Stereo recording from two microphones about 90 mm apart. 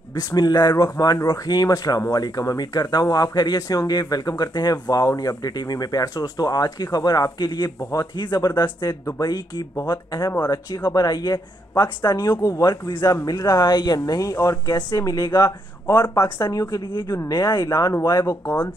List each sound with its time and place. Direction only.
0.1 s speech: 45° left (ahead or behind)